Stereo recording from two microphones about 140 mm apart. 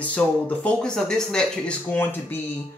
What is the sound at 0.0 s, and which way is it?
Speech, 10° left (ahead or behind).